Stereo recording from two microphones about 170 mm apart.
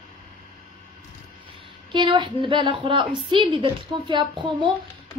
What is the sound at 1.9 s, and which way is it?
A woman's voice, 30° right (ahead or behind).